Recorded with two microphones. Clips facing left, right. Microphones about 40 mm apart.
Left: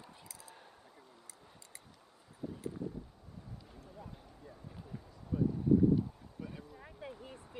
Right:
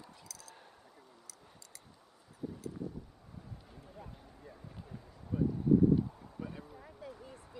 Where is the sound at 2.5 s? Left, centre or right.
Left.